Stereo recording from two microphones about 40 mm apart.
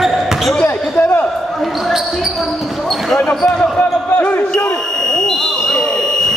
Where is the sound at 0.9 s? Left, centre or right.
Left.